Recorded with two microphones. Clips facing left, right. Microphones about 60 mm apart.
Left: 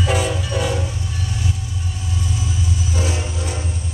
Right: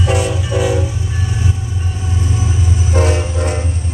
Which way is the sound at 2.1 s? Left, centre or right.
Right.